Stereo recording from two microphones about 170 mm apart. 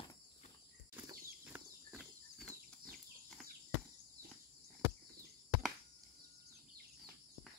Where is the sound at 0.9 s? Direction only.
15° right (ahead or behind).